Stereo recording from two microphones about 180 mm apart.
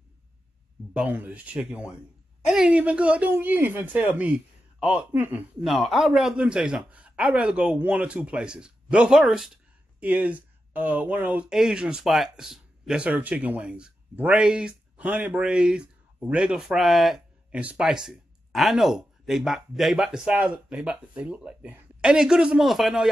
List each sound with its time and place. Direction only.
0.9 s speech: 10° right (ahead or behind)